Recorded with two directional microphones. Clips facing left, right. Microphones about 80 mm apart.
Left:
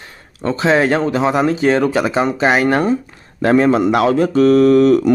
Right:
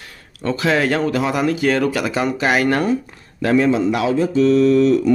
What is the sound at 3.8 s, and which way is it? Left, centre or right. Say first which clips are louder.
Speech: left 4 dB; left.